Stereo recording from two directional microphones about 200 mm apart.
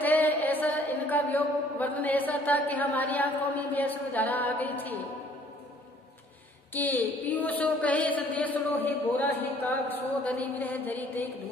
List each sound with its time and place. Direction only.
0.0 s mantra: 10° left (ahead or behind)
6.7 s a woman's voice: 10° left (ahead or behind)